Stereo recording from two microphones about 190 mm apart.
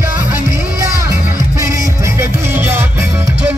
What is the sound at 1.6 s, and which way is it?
Music, 15° right (ahead or behind).